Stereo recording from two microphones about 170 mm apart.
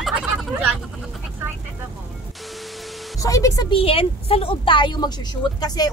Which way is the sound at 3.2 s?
20° left (ahead or behind).